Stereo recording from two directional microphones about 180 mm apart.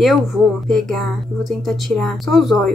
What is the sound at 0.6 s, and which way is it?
Speech, centre (ahead or behind).